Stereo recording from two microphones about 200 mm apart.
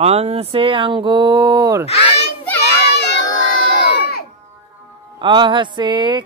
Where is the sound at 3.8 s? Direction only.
50° left (ahead or behind).